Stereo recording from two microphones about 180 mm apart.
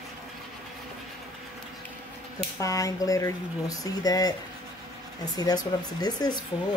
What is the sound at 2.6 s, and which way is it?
Speech, 20° left (ahead or behind).